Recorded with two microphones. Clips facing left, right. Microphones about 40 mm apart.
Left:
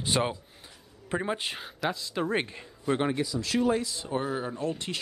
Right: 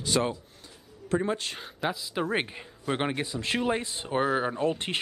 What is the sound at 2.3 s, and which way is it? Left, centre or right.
Speech, centre.